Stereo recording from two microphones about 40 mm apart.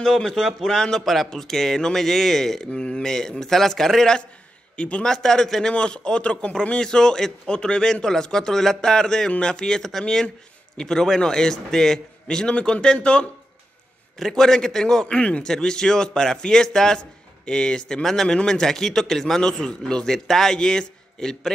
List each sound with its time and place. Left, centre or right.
0.0 s a man's voice: centre
2.7 s a man's voice: left
4.7 s a man's voice: left
5.0 s a man's voice: centre
14.1 s a man's voice: centre
15.1 s speech: left
15.4 s a man's voice: centre